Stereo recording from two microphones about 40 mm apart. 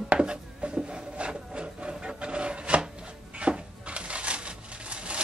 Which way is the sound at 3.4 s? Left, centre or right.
Right.